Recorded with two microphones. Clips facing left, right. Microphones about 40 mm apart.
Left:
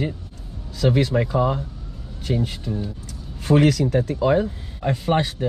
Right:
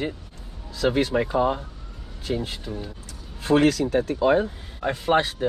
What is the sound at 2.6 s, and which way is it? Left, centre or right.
Speech, centre.